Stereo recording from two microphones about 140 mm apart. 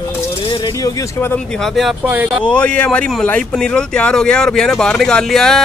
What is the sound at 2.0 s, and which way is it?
Speech, 10° right (ahead or behind).